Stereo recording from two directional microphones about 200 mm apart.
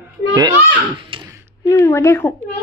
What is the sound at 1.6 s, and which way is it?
Speech, 15° left (ahead or behind).